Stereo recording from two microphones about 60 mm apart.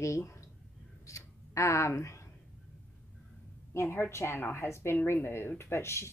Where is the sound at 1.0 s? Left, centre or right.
Left.